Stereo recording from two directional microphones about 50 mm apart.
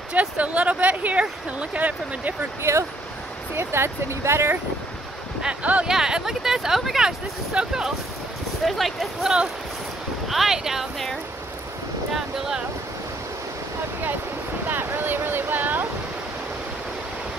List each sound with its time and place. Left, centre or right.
0.1 s speech: right
2.7 s speech: right
3.5 s speech: right
5.6 s speech: right
5.9 s speech: centre
8.6 s speech: centre
10.2 s speech: centre
12.1 s speech: centre
14.7 s a sound: right